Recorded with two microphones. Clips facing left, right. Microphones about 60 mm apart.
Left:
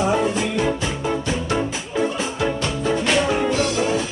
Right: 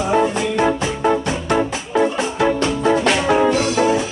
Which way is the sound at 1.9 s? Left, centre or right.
Right.